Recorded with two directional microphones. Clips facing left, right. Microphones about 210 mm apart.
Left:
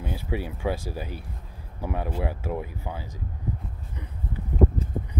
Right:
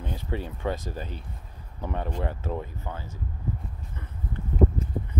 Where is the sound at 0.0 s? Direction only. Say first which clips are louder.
Left 2 dB; 10° left (ahead or behind).